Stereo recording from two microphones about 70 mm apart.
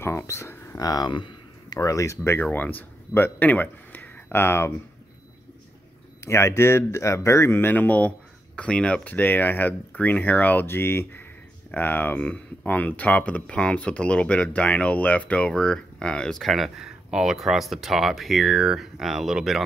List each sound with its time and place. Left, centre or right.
0.0 s speech: left
0.7 s speech: left
2.4 s speech: left
6.2 s speech: left; by 19.6 s centre